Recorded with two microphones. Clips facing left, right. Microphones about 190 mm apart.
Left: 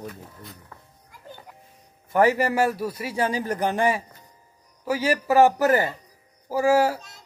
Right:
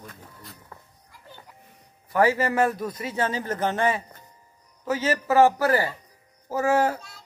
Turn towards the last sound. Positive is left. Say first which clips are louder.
# left 2 dB
turn(degrees=10)  # may be behind; listen again after turning